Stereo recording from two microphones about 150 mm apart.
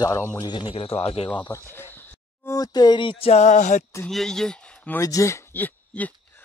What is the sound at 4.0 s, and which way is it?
Speech, 5° left (ahead or behind).